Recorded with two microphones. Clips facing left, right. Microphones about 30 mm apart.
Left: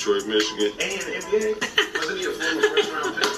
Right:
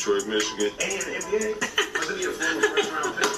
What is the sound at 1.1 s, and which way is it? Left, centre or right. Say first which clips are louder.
Speech: left 6 dB; centre.